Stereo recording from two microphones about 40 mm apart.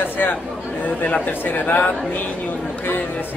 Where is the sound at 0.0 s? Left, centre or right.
Left.